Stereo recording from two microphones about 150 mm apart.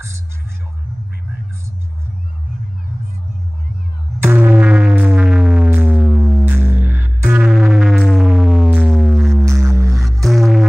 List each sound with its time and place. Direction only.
4.2 s music: 15° right (ahead or behind)
9.5 s music: 15° right (ahead or behind)
9.8 s music: centre (ahead or behind)